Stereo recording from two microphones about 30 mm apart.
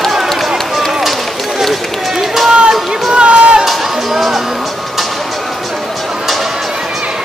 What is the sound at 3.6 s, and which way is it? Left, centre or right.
Music, centre.